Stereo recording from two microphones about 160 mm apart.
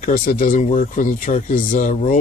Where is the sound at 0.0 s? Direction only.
60° left (ahead or behind).